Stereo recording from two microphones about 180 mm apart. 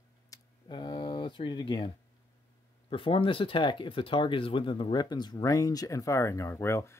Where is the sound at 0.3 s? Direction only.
25° left (ahead or behind).